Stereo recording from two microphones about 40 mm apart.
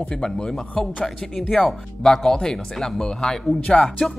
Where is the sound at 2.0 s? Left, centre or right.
Centre.